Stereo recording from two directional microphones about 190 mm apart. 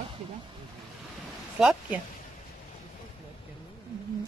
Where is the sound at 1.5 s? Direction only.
5° right (ahead or behind).